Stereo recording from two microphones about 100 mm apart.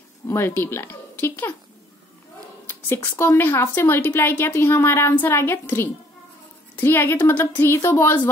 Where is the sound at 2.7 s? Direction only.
20° left (ahead or behind).